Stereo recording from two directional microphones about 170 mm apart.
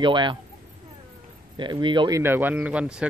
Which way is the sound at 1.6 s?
25° right (ahead or behind).